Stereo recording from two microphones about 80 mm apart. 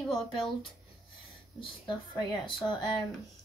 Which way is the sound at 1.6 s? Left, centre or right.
Left.